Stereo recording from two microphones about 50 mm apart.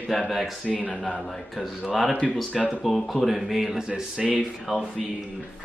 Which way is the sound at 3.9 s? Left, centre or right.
Centre.